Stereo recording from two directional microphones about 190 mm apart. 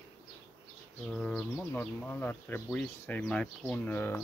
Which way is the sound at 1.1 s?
5° left (ahead or behind).